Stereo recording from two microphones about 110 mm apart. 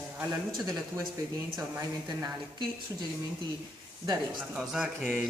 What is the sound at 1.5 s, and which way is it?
Speech, 30° right (ahead or behind).